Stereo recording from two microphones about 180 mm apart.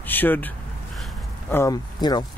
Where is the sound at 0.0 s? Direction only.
10° left (ahead or behind).